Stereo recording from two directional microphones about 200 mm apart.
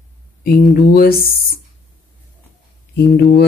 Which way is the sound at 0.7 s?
50° left (ahead or behind).